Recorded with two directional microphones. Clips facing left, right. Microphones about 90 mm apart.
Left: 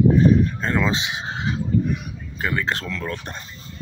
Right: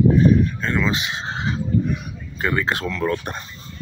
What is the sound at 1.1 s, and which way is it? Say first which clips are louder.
Speech: right 1 dB; 5° left (ahead or behind).